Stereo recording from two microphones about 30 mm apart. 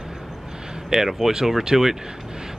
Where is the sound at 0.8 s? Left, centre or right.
Centre.